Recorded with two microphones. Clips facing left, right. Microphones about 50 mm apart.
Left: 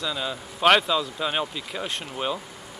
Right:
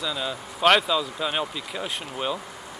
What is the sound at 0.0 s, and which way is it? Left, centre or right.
Speech, centre.